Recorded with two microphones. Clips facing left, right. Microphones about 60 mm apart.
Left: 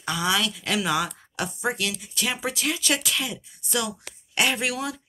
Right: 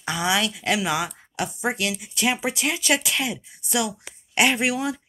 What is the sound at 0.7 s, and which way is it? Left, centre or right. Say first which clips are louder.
Speech: even; centre.